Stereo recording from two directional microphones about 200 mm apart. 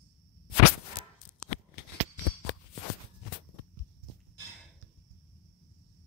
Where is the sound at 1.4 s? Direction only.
90° left.